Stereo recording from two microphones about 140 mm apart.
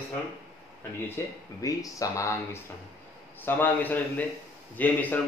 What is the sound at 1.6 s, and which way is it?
Speech, 25° left (ahead or behind).